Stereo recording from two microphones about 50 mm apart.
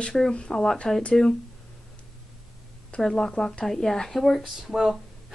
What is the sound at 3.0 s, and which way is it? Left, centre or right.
A woman's voice, centre.